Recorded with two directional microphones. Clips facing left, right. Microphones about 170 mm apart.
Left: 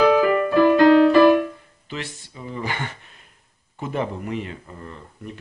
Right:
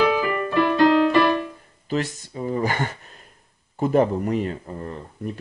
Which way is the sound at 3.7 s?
40° right (ahead or behind).